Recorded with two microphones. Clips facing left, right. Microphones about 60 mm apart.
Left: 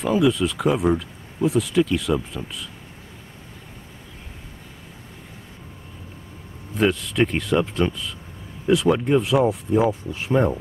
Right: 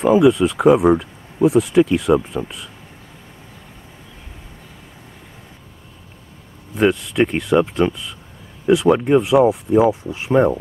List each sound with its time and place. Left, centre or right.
0.0 s speech: centre
6.7 s speech: centre